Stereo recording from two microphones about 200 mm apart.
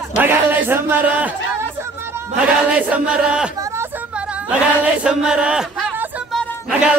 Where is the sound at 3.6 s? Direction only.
15° right (ahead or behind).